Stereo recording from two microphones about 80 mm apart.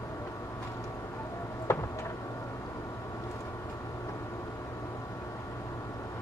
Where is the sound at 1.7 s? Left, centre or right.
Left.